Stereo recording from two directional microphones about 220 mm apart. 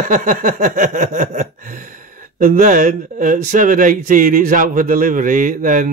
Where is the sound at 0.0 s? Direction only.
40° right (ahead or behind).